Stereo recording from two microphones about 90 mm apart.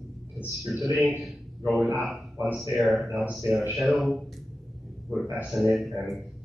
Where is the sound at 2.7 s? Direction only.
Centre (ahead or behind).